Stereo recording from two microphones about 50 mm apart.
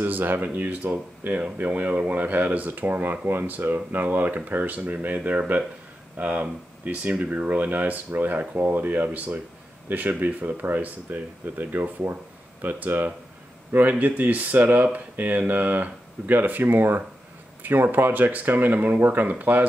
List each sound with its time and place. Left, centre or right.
0.0 s speech: right